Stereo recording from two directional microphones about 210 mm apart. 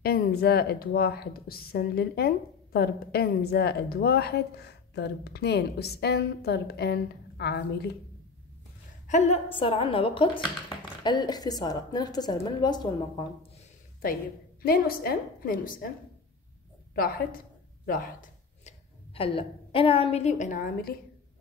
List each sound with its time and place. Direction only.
0.0 s speech: 50° left (ahead or behind)
9.0 s a woman's voice: 35° left (ahead or behind)
14.6 s speech: 45° left (ahead or behind)
16.9 s speech: 45° left (ahead or behind)